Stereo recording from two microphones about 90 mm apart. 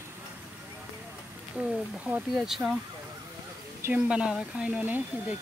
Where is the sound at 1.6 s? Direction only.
20° right (ahead or behind).